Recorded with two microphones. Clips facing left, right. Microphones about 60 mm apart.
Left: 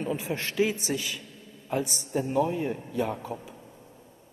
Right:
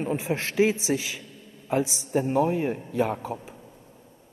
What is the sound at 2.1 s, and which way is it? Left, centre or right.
A man's voice, right.